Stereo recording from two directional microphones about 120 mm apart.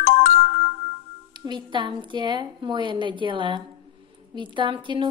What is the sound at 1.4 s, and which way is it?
A woman's voice, 40° right (ahead or behind).